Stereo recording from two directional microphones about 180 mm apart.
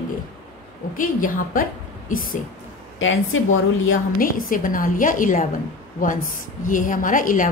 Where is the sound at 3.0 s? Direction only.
90° left.